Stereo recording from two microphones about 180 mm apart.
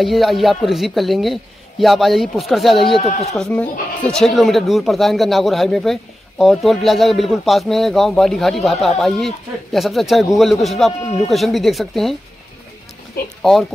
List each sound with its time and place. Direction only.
0.0 s speech: centre (ahead or behind)
3.0 s speech: 35° left (ahead or behind)
3.3 s speech: 5° left (ahead or behind)
13.4 s speech: centre (ahead or behind)